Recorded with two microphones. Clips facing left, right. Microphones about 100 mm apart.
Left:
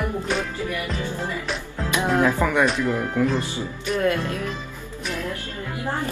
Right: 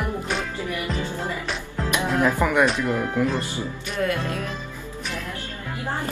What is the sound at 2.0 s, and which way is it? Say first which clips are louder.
Speech: left 2 dB; 20° left (ahead or behind).